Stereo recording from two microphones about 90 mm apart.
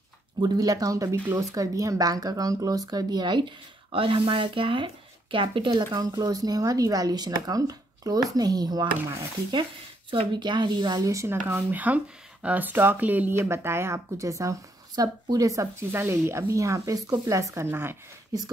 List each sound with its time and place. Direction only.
0.4 s speech: 45° right (ahead or behind); by 5.9 s 70° right (ahead or behind)
5.9 s speech: 50° right (ahead or behind)
10.1 s speech: 60° right (ahead or behind)
11.0 s speech: 35° right (ahead or behind)
18.3 s speech: 45° right (ahead or behind)